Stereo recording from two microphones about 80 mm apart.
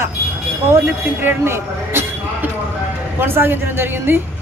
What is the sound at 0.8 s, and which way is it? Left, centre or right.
Speech, right.